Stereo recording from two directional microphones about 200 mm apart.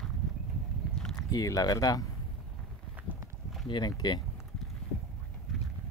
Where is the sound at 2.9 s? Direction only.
10° right (ahead or behind).